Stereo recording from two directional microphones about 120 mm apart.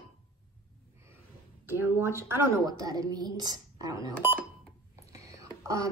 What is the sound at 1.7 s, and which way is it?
Speech, 20° right (ahead or behind).